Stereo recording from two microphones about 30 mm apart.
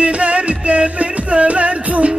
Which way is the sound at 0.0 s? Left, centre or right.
Right.